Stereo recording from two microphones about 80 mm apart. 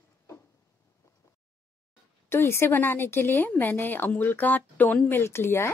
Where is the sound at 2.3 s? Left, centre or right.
Left.